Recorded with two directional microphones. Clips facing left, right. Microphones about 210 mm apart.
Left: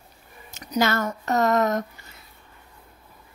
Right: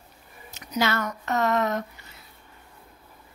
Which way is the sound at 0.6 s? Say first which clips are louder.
Left 3 dB; 45° left (ahead or behind).